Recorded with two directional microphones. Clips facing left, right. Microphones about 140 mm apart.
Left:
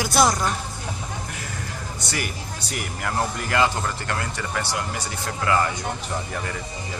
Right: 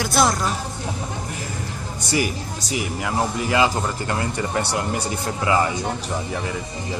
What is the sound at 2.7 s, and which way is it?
Speech, 10° right (ahead or behind).